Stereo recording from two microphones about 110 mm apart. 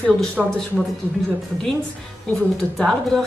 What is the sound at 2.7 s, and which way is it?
Speech, 5° left (ahead or behind).